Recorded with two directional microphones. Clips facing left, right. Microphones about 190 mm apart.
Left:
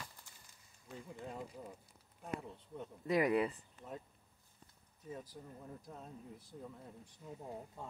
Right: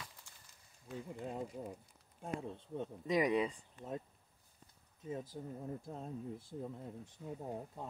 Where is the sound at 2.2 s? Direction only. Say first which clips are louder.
Right 1 dB; 25° right (ahead or behind).